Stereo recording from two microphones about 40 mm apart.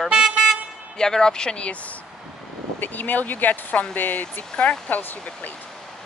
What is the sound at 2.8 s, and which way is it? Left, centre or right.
Speech, left.